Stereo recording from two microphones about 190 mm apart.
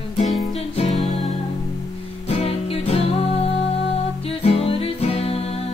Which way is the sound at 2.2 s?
35° left (ahead or behind).